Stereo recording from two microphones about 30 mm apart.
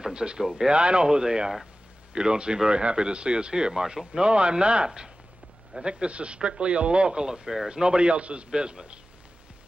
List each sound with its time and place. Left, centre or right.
0.1 s speech: right
1.0 s speech: right
3.7 s speech: centre
5.7 s speech: right
8.1 s speech: right
8.5 s speech: right